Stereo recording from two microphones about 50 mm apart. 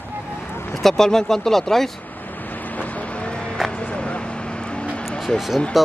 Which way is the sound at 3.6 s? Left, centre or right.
Left.